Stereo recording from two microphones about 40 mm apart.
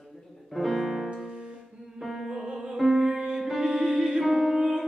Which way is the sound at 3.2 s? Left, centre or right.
Centre.